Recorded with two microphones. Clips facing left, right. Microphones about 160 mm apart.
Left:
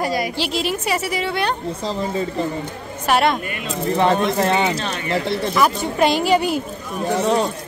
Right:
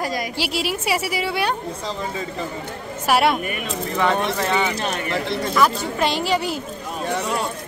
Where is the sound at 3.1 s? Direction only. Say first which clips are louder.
Left 1 dB; 5° right (ahead or behind).